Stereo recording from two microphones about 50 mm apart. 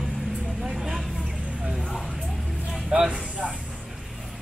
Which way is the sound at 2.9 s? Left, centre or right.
Right.